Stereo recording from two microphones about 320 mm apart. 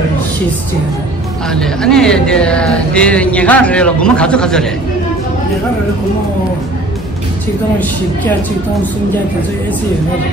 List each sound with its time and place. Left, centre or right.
1.5 s speech: centre